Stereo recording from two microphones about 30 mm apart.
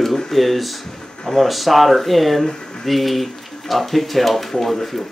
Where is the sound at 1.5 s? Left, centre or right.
Centre.